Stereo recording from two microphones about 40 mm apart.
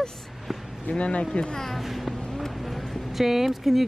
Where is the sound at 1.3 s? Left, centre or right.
Left.